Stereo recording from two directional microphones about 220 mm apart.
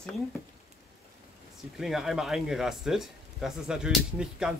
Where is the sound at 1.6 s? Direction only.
Centre (ahead or behind).